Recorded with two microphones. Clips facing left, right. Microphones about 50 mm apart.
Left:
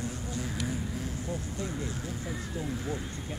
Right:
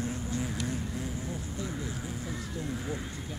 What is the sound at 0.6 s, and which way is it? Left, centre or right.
Vehicle, centre.